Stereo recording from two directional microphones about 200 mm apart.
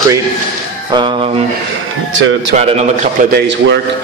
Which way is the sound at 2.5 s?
35° right (ahead or behind).